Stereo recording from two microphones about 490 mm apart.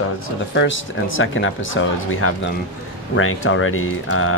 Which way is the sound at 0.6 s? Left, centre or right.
Left.